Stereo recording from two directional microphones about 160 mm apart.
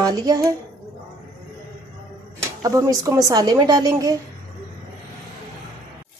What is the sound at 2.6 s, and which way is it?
A woman's voice, 20° right (ahead or behind).